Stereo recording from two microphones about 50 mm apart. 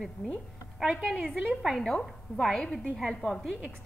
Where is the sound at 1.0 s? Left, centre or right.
Centre.